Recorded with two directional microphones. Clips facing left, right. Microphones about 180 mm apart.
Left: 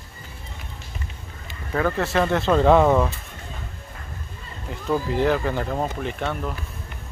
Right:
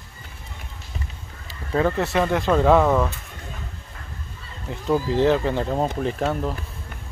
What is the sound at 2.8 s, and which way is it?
Speech, 10° left (ahead or behind).